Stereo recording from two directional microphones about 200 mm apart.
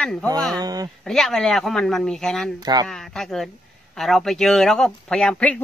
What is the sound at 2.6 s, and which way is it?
Speech, 20° right (ahead or behind).